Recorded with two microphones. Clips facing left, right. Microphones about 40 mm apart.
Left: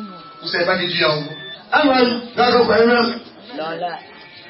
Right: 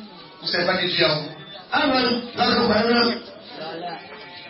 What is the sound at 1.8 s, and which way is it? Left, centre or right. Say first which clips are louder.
A man's voice: left 4 dB; left.